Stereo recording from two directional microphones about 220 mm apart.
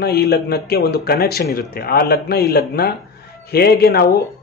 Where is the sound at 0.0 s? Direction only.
45° left (ahead or behind).